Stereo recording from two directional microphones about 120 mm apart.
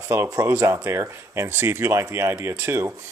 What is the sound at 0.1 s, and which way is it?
Speech, 20° right (ahead or behind).